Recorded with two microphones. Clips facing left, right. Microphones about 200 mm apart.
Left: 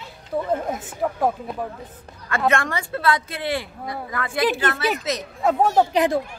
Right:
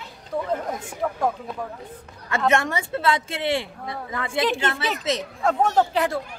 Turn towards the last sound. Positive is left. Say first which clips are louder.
# left 3 dB
turn(degrees=15)  # may be behind; listen again after turning